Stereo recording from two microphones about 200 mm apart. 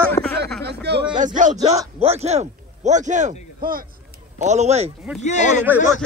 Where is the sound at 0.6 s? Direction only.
55° right (ahead or behind).